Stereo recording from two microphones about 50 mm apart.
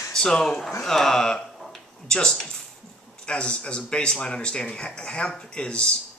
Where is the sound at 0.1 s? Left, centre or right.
Centre.